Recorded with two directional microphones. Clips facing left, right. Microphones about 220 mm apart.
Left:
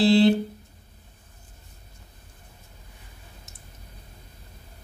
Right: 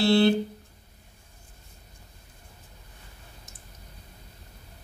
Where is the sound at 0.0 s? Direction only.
20° left (ahead or behind).